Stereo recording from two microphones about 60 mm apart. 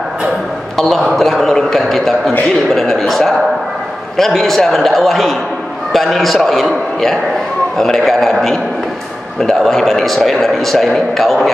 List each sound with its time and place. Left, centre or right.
0.7 s a man's voice: centre